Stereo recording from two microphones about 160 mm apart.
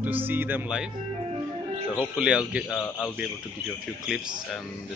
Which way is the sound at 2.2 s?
5° right (ahead or behind).